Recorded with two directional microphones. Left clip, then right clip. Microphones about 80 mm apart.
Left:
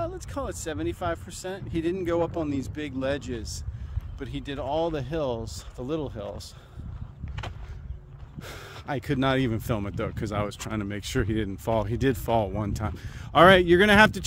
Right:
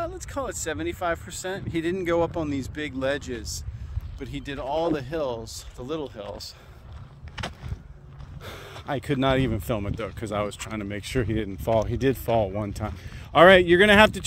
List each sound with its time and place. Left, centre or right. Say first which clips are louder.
0.2 s speech: right 3 dB; right
2.4 s speech: right 1 dB; right
4.2 s speech: even; right
5.8 s speech: left 1 dB; right
8.4 s speech: right 1 dB; left
9.9 s speech: right 1 dB; left
11.9 s speech: right 1 dB; left